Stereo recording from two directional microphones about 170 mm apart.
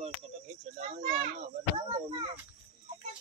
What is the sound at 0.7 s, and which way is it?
Children playing, 50° right (ahead or behind).